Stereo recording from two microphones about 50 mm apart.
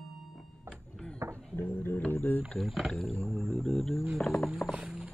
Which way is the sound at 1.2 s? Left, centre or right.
Right.